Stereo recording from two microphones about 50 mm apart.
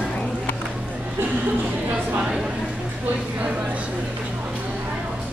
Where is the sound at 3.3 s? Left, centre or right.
Right.